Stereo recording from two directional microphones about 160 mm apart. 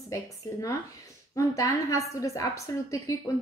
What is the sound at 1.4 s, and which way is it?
A woman's voice, 20° left (ahead or behind).